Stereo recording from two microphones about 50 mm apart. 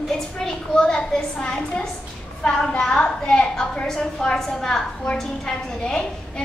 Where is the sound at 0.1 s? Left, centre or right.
Centre.